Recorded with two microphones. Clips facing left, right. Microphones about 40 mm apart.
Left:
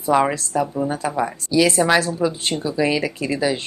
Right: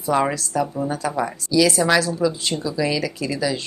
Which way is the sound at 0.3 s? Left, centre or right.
Left.